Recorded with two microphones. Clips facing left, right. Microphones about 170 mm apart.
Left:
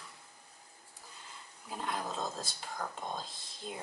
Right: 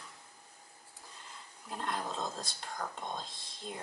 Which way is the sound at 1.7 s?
5° left (ahead or behind).